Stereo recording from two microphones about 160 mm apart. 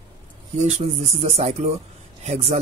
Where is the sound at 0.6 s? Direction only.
45° right (ahead or behind).